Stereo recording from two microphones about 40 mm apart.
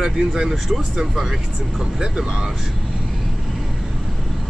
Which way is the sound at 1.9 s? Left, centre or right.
Centre.